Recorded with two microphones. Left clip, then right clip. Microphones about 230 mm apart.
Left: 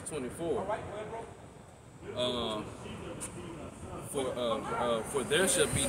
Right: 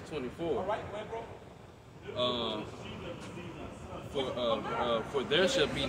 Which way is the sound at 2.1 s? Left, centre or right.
Centre.